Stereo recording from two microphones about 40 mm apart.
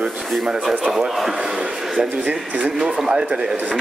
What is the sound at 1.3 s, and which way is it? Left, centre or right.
Speech, centre.